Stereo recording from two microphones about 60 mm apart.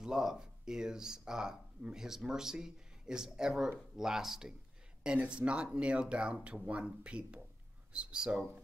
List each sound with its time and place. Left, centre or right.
0.0 s speech: centre